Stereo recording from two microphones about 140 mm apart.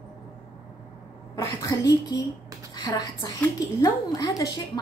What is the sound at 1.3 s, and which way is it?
A woman's voice, 25° left (ahead or behind).